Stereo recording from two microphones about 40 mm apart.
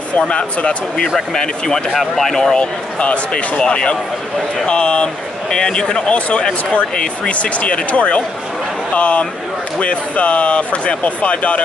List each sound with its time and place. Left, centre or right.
0.3 s speech: left
0.9 s speech: centre
2.5 s speech: left
6.1 s speech: left